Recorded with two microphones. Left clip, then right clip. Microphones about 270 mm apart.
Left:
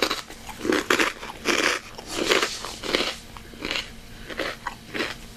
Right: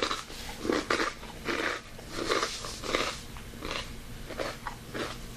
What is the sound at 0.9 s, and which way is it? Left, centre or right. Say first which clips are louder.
Biting: left 8 dB; left.